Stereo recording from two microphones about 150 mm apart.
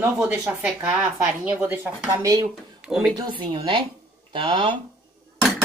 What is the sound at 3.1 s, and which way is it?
Speech, 30° right (ahead or behind).